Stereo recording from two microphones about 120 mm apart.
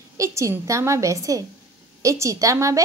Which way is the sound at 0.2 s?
25° right (ahead or behind).